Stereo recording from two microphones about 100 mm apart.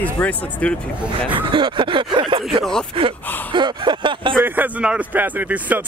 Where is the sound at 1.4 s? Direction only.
55° right (ahead or behind).